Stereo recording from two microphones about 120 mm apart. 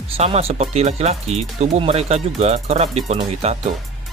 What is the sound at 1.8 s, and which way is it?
Speech, 55° right (ahead or behind).